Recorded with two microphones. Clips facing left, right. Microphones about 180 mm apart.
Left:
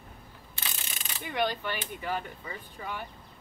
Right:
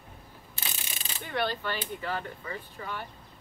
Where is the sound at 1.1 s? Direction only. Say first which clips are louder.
Left 1 dB; 15° left (ahead or behind).